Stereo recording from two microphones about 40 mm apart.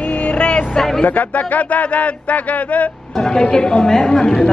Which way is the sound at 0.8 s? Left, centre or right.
Centre.